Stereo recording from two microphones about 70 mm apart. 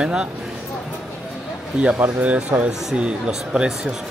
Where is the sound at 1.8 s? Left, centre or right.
Centre.